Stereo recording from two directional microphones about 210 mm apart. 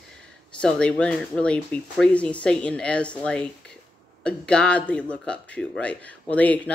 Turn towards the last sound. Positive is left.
turn(degrees=5)  # may be behind; listen again after turning